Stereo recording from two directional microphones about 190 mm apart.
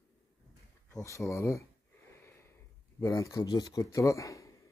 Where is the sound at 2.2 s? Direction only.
10° left (ahead or behind).